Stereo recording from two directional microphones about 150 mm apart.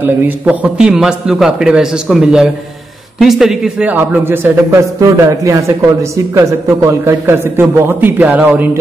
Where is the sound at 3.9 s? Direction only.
15° right (ahead or behind).